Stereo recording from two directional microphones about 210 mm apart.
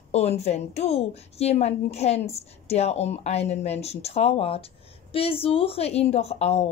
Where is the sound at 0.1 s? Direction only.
30° left (ahead or behind).